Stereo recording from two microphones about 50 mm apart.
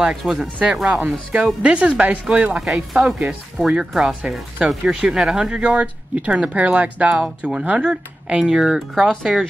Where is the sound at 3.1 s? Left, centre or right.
Right.